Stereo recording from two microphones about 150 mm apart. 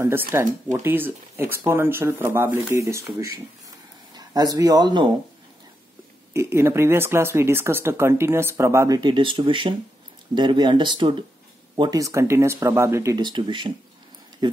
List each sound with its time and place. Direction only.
0.3 s speech: 15° right (ahead or behind)
6.3 s speech: 15° right (ahead or behind)